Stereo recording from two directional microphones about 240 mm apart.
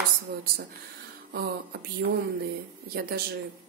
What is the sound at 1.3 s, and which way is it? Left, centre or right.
Speech, right.